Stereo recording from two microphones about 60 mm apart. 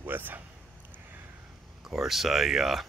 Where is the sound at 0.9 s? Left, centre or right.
Right.